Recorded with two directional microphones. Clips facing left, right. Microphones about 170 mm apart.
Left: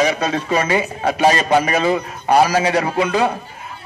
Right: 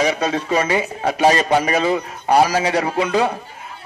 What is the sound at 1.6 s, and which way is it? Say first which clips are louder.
A man's voice: left 1 dB; 30° right (ahead or behind).